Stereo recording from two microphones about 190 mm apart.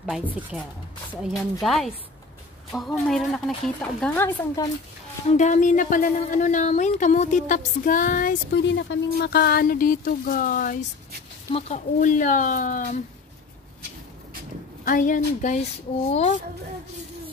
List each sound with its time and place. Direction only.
0.0 s speech: 5° right (ahead or behind)
5.4 s speech: 40° left (ahead or behind)
8.5 s speech: 65° left (ahead or behind); by 13.0 s 45° left (ahead or behind)
14.9 s speech: 45° left (ahead or behind)